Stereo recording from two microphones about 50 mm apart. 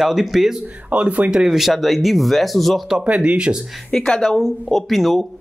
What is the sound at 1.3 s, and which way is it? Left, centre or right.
Speech, centre.